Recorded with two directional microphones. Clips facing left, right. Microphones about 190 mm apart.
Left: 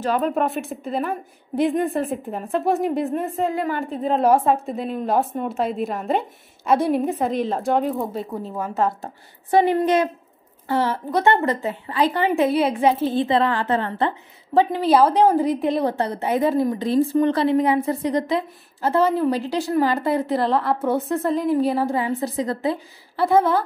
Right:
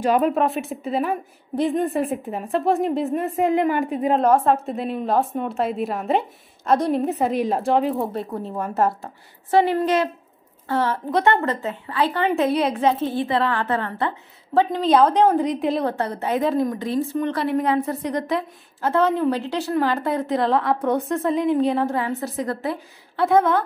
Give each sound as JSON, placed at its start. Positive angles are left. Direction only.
{"t": 0.0, "sound": "a woman's voice", "side_deg": -10}
{"t": 0.3, "sound": "a woman's voice", "side_deg": 0}
{"t": 3.4, "sound": "a woman's voice", "side_deg": -15}
{"t": 4.2, "sound": "a woman's voice", "side_deg": 5}
{"t": 7.2, "sound": "a woman's voice", "side_deg": -10}
{"t": 9.5, "sound": "a woman's voice", "side_deg": 15}
{"t": 13.1, "sound": "a woman's voice", "side_deg": 20}
{"t": 14.6, "sound": "a woman's voice", "side_deg": 10}
{"t": 15.8, "sound": "a woman's voice", "side_deg": 15}
{"t": 16.8, "sound": "a woman's voice", "side_deg": 35}
{"t": 17.6, "sound": "a woman's voice", "side_deg": 10}
{"t": 23.1, "sound": "a woman's voice", "side_deg": 5}